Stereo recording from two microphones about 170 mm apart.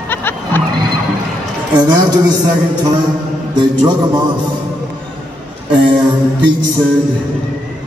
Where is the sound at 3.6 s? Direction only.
25° right (ahead or behind).